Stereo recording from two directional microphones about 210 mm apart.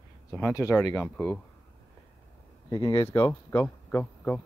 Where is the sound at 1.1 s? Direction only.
5° left (ahead or behind).